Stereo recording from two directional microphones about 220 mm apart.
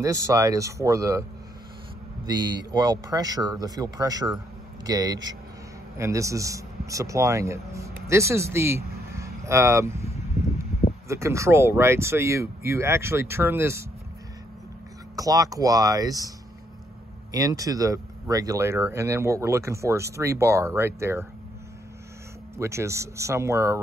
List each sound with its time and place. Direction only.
0.0 s speech: 15° right (ahead or behind)
2.2 s speech: 20° right (ahead or behind)
11.1 s speech: 15° right (ahead or behind)
15.1 s speech: 15° right (ahead or behind)
17.3 s speech: 15° right (ahead or behind)
22.6 s speech: 15° right (ahead or behind)